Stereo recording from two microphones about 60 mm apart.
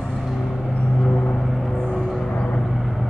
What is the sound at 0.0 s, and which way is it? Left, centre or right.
Vehicle, centre.